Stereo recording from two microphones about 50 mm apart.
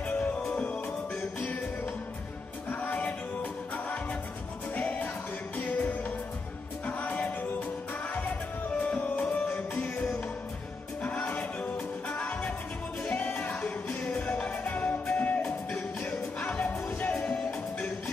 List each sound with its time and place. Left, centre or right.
0.2 s music: left
2.7 s music: left
13.8 s music: left
14.5 s music: left
17.1 s music: centre